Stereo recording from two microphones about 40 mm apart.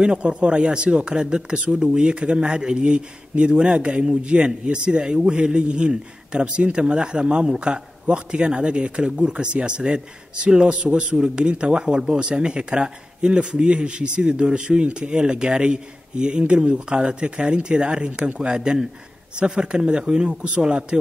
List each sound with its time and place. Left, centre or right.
0.0 s speech: right